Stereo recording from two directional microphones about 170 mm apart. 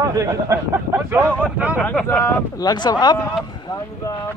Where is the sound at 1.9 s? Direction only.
10° left (ahead or behind).